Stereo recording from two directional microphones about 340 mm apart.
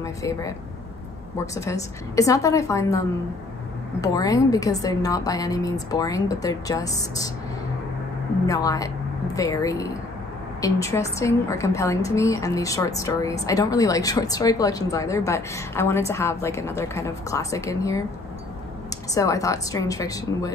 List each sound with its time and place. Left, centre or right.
0.0 s a woman's voice: centre
8.5 s a woman's voice: centre
19.1 s a woman's voice: centre